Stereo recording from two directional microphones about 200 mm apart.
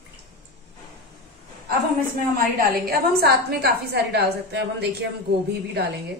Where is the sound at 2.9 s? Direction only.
50° right (ahead or behind).